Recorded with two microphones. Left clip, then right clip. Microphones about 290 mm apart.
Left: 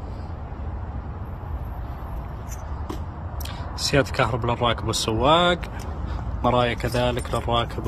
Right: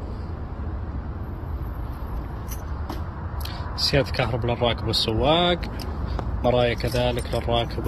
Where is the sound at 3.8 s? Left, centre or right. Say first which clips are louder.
Left 1 dB; centre.